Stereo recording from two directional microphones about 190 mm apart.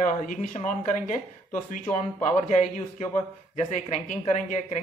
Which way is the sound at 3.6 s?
35° left (ahead or behind).